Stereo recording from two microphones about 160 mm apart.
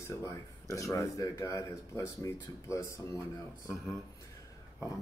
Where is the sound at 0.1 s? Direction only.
20° left (ahead or behind).